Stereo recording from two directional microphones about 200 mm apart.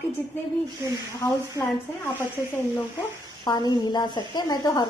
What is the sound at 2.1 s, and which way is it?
A woman's voice, 10° left (ahead or behind).